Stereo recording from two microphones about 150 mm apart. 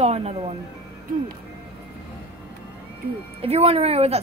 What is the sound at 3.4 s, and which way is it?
Speech, 45° right (ahead or behind).